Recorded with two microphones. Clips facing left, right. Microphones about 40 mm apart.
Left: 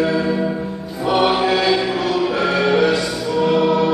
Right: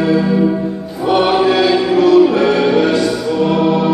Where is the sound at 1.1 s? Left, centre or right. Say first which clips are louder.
Right 4 dB; centre.